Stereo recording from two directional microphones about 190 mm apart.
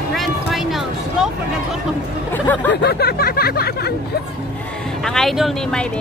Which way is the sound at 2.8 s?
55° left (ahead or behind).